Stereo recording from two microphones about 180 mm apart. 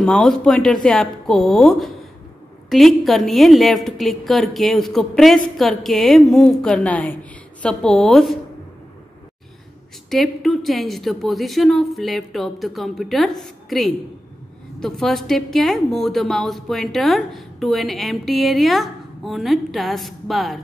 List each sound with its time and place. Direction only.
0.0 s a woman's voice: 5° left (ahead or behind)
10.0 s a woman's voice: centre (ahead or behind)